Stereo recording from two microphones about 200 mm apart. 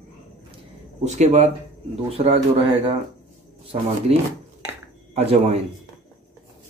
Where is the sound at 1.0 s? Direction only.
35° right (ahead or behind).